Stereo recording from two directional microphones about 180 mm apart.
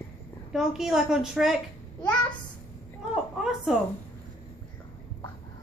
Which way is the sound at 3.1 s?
Centre (ahead or behind).